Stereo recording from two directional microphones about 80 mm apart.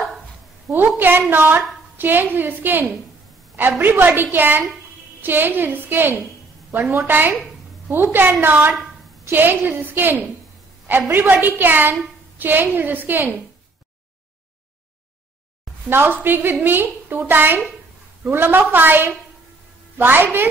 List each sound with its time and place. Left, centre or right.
0.7 s a woman's voice: right
15.9 s a woman's voice: right